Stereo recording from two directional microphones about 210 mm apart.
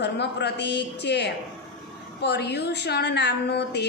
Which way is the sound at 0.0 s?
55° left (ahead or behind).